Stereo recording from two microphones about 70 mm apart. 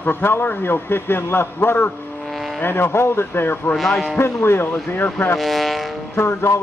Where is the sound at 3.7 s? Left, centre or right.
Centre.